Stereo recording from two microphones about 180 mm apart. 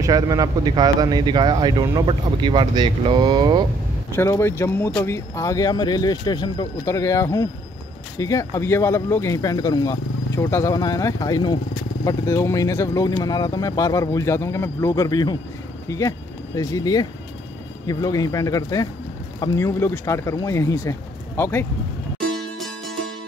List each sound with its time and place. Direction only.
0.0 s speech: 20° right (ahead or behind)
4.1 s speech: 15° left (ahead or behind)
22.3 s music: centre (ahead or behind)